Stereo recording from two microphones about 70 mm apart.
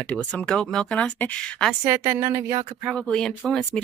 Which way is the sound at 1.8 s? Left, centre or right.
Right.